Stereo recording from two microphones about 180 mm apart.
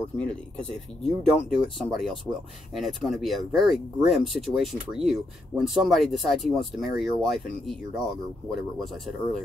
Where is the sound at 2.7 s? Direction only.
Centre (ahead or behind).